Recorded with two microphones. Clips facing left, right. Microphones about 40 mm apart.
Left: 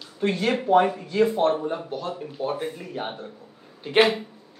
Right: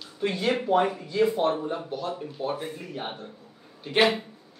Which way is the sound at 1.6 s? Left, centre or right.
Centre.